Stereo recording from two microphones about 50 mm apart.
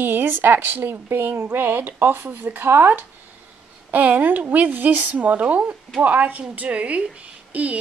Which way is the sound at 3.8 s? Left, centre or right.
Right.